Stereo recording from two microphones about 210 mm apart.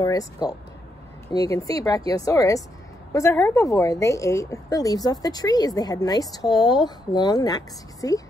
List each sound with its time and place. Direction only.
0.0 s a woman's voice: 15° left (ahead or behind)